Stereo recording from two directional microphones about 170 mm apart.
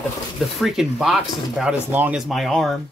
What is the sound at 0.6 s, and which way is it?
Speech, centre (ahead or behind).